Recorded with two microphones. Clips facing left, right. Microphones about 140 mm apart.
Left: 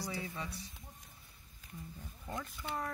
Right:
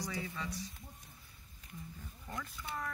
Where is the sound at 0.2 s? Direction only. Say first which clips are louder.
Right 1 dB; 20° left (ahead or behind).